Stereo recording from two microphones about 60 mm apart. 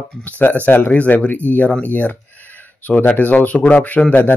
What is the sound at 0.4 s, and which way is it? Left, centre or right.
Speech, left.